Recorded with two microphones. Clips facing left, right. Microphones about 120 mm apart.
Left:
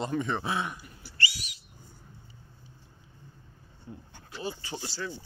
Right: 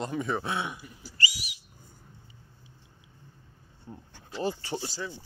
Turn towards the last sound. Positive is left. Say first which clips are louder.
# right 5 dB
turn(degrees=-35)  # may be behind; listen again after turning